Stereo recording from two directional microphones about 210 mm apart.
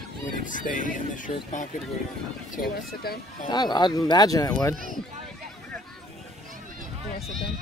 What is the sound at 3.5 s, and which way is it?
Speech, 20° left (ahead or behind).